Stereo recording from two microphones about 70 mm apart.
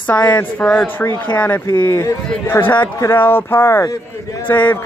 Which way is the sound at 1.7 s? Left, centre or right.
Left.